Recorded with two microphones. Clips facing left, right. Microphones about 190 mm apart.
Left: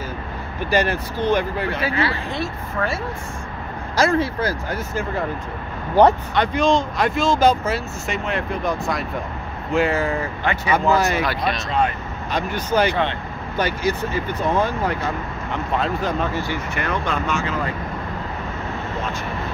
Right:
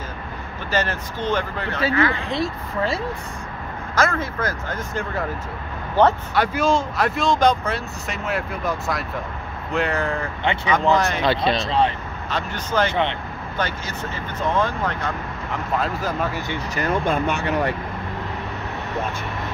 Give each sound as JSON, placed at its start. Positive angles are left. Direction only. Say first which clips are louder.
{"t": 0.7, "sound": "speech", "louder": "left 4 dB", "side_deg": 10}
{"t": 3.9, "sound": "speech", "louder": "left 4 dB", "side_deg": 30}
{"t": 4.6, "sound": "speech", "louder": "left 2 dB", "side_deg": 5}
{"t": 6.3, "sound": "speech", "louder": "left 2 dB", "side_deg": -5}
{"t": 10.4, "sound": "speech", "louder": "even", "side_deg": -25}
{"t": 10.7, "sound": "speech", "louder": "left 1 dB", "side_deg": 5}
{"t": 11.2, "sound": "speech", "louder": "right 3 dB", "side_deg": -30}
{"t": 12.3, "sound": "speech", "louder": "left 4 dB", "side_deg": 10}
{"t": 15.8, "sound": "speech", "louder": "left 2 dB", "side_deg": -5}
{"t": 16.7, "sound": "speech", "louder": "right 4 dB", "side_deg": -45}